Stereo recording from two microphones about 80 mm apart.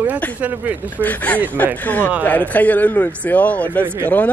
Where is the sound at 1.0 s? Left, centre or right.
Centre.